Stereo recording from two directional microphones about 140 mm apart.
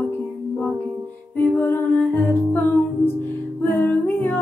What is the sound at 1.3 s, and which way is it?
Music, 15° left (ahead or behind).